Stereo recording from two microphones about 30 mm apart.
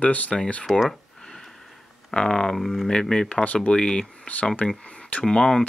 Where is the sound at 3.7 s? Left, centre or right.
Left.